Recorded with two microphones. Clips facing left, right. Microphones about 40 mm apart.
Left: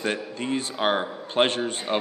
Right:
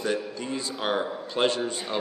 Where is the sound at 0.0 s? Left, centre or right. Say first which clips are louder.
Left 1 dB; left.